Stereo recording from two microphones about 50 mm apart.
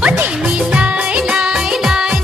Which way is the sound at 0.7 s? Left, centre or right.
Right.